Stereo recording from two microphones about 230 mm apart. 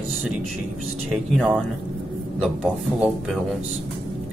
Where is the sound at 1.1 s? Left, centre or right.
Centre.